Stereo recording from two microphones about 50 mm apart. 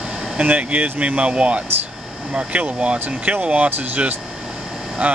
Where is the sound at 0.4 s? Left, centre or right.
Right.